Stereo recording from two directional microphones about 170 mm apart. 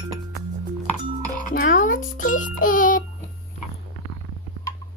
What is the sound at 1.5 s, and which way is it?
A child's voice, 50° left (ahead or behind).